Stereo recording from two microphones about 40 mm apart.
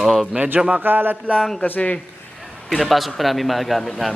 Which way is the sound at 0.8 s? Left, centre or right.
Right.